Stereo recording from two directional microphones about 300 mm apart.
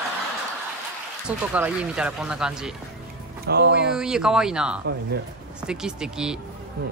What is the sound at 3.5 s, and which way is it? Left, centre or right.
Speech, right.